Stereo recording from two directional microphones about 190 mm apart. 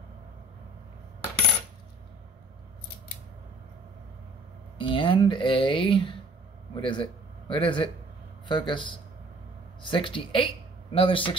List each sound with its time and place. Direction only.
4.7 s a man's voice: 25° left (ahead or behind)